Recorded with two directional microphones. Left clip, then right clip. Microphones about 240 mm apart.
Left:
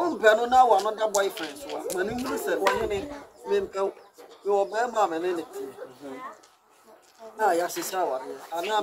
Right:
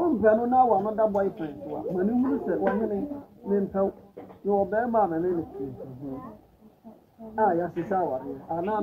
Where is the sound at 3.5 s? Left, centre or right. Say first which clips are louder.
Even; left.